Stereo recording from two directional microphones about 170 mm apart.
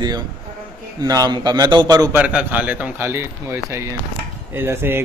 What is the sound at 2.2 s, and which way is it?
Speech, 10° right (ahead or behind).